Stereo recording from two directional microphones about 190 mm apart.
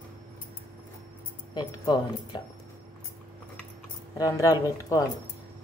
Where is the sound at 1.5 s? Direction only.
25° left (ahead or behind).